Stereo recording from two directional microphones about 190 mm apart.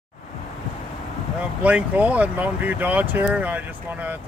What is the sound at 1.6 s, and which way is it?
Speech, 10° right (ahead or behind).